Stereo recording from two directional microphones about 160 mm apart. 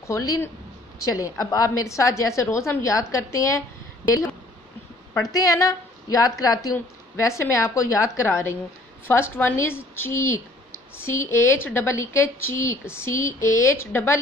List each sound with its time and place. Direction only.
0.0 s a woman's voice: 20° left (ahead or behind)
5.1 s a woman's voice: 20° left (ahead or behind)